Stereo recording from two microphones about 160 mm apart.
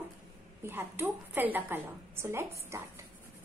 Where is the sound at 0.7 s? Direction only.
15° right (ahead or behind).